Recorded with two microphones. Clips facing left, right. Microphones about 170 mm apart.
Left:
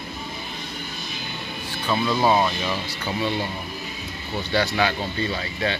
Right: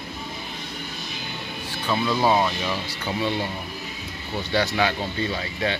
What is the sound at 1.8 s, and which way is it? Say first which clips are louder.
Speech: left 1 dB; 10° left (ahead or behind).